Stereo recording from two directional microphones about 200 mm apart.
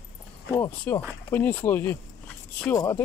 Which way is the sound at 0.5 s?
10° left (ahead or behind).